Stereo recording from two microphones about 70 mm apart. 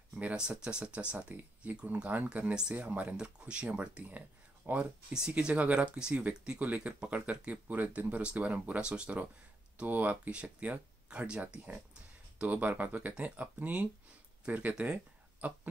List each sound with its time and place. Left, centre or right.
0.2 s speech: centre
5.1 s speech: centre